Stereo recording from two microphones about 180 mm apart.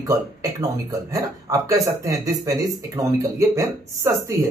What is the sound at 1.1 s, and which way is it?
Speech, 20° right (ahead or behind).